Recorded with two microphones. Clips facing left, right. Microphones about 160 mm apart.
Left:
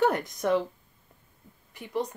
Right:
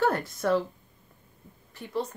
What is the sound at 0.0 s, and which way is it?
Speech, 15° left (ahead or behind).